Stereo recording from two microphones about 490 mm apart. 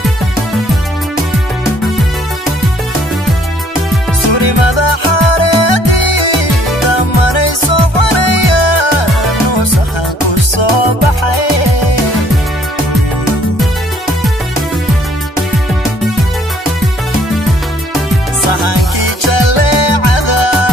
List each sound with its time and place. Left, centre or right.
4.3 s music: left
10.6 s music: left
18.5 s music: left